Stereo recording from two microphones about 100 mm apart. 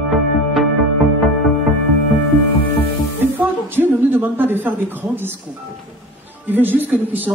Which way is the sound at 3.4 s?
20° right (ahead or behind).